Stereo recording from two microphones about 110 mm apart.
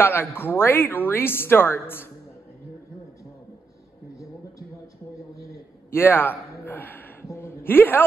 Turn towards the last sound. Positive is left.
turn(degrees=20)  # may be behind; listen again after turning